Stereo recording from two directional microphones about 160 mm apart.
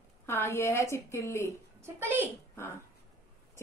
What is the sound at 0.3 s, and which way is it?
A woman's voice, 15° left (ahead or behind).